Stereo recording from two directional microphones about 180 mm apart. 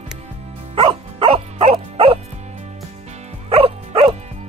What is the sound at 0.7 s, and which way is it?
Music, 30° right (ahead or behind).